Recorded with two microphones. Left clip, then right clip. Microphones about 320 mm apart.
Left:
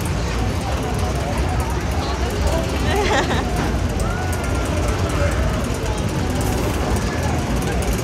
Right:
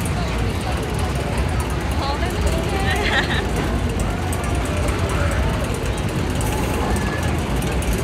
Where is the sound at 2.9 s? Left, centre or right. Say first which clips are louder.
Left 2 dB; centre.